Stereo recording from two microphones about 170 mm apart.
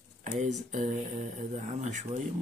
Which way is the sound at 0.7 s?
45° right (ahead or behind).